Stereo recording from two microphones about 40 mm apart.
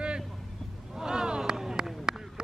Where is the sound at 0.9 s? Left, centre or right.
Centre.